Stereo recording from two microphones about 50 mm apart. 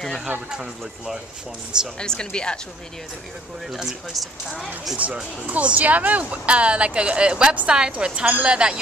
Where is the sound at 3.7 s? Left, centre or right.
Centre.